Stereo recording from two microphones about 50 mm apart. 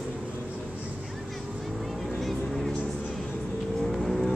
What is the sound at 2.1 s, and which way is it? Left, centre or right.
Vehicle, centre.